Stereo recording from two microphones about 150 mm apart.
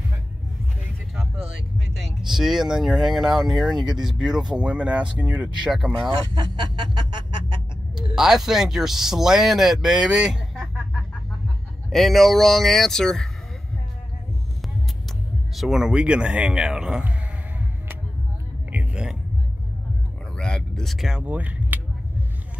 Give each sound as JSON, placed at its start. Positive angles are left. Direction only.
{"t": 2.0, "sound": "speech", "side_deg": 0}
{"t": 6.8, "sound": "music", "side_deg": -30}
{"t": 7.9, "sound": "speech", "side_deg": -5}
{"t": 11.9, "sound": "speech", "side_deg": 0}
{"t": 15.5, "sound": "speech", "side_deg": 0}
{"t": 18.7, "sound": "a sound", "side_deg": -10}
{"t": 20.3, "sound": "a sound", "side_deg": 5}